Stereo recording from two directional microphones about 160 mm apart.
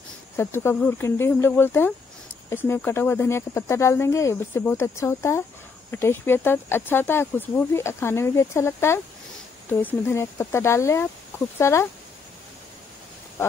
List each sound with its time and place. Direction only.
0.4 s speech: 15° left (ahead or behind)